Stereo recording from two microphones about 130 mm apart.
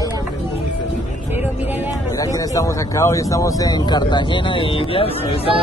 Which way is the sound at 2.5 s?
25° left (ahead or behind).